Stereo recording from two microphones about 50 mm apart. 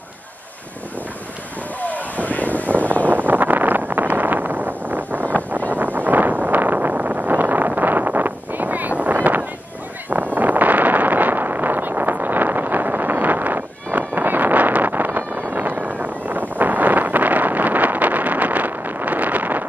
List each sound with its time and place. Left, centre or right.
1.8 s vehicle: left
3.1 s vehicle: right
5.9 s wind noise: right
13.9 s vehicle: right
15.8 s wind noise: right